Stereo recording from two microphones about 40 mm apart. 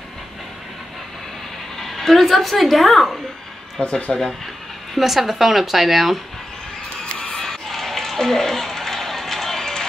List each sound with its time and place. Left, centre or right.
1.8 s speech: centre
3.8 s speech: left
4.9 s speech: centre
7.3 s a sound: centre